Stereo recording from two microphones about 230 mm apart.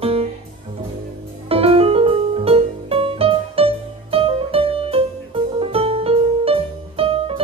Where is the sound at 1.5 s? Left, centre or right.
Right.